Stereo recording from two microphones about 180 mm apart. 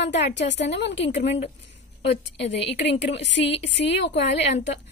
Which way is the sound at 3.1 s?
85° left.